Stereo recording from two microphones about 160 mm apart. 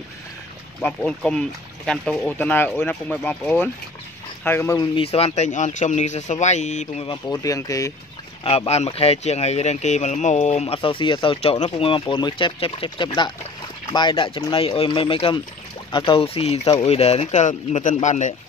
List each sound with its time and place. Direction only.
0.7 s speech: 5° left (ahead or behind)
4.7 s speech: 35° left (ahead or behind)
7.3 s speech: 20° left (ahead or behind)
8.5 s speech: 40° left (ahead or behind)